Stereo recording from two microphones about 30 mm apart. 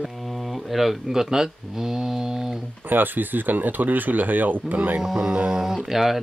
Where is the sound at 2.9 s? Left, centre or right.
Right.